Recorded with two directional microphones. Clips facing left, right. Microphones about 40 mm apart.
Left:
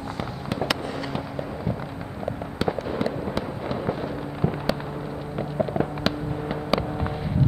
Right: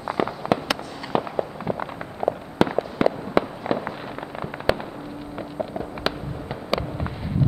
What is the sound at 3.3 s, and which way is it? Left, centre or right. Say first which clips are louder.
Fireworks: right 6 dB; right.